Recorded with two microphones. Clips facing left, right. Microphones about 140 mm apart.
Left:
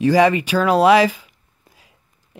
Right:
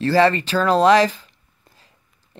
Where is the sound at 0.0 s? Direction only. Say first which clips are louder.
Left 2 dB; 15° left (ahead or behind).